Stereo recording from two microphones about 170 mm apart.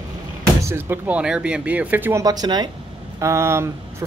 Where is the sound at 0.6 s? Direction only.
15° right (ahead or behind).